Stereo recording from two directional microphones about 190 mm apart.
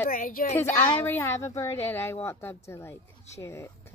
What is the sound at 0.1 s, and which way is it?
Speech, 50° left (ahead or behind).